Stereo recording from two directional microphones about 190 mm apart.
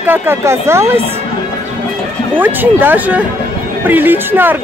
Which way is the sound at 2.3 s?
10° right (ahead or behind).